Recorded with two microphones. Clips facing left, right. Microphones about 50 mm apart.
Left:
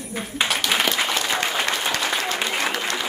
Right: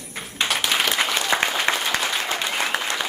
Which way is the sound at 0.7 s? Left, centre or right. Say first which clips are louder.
Right 1 dB; centre.